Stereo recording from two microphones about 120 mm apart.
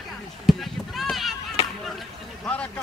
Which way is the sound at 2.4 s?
10° left (ahead or behind).